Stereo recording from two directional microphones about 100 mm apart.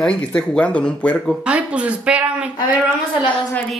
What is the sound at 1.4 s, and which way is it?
Speech, 10° right (ahead or behind).